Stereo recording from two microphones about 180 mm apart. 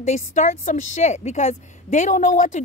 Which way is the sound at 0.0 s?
40° left (ahead or behind).